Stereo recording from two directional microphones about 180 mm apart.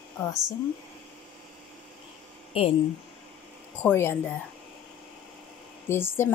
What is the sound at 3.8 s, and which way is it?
Speech, 15° left (ahead or behind).